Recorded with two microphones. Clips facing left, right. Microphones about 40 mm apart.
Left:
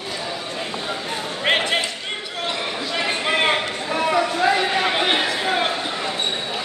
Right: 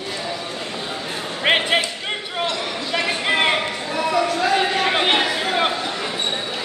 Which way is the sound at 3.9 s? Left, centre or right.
Left.